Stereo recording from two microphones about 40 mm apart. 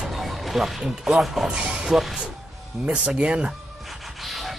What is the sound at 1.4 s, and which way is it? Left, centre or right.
Speech, right.